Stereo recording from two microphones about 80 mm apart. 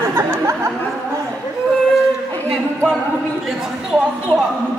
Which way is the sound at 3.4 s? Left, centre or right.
Centre.